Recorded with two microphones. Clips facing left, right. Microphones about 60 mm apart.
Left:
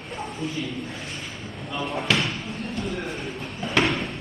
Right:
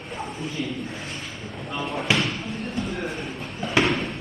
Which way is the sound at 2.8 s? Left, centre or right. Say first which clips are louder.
Left 1 dB; centre.